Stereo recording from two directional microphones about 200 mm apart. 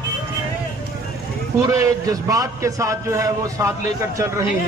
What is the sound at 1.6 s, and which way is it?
A man's voice, 15° right (ahead or behind).